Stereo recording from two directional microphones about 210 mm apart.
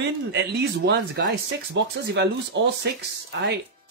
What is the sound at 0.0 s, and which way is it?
A man's voice, 55° right (ahead or behind).